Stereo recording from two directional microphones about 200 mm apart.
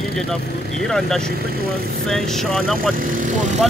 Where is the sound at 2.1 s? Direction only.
Centre (ahead or behind).